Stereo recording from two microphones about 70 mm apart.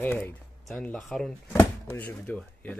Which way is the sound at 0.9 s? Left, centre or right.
Centre.